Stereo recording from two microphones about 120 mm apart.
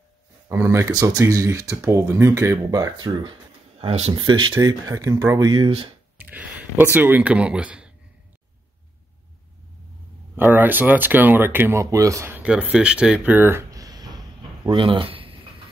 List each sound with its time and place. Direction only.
0.5 s speech: 25° right (ahead or behind)
3.8 s speech: 55° right (ahead or behind)
4.1 s speech: 40° right (ahead or behind)
6.1 s speech: 15° right (ahead or behind)
10.3 s speech: 15° right (ahead or behind)
12.4 s speech: 10° right (ahead or behind); by 14.2 s 35° right (ahead or behind)
14.7 s speech: 45° right (ahead or behind)